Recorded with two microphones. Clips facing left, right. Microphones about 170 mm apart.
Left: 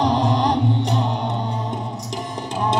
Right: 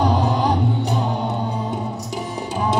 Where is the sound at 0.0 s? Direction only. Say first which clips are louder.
Even; 5° right (ahead or behind).